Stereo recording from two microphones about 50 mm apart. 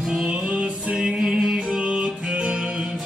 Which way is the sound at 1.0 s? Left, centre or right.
Centre.